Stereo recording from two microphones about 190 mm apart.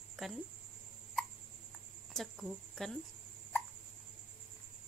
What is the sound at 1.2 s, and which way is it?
Hiccup, 5° left (ahead or behind).